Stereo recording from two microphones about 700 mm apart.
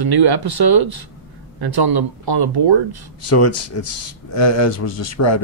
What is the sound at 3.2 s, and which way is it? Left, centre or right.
A man's voice, centre.